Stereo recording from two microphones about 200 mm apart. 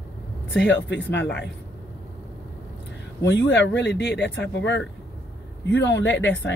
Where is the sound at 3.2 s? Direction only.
60° left (ahead or behind).